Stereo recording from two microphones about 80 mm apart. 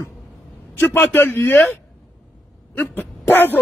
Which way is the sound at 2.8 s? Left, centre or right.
Left.